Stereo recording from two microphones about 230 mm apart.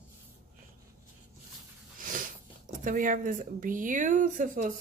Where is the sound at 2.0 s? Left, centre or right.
Right.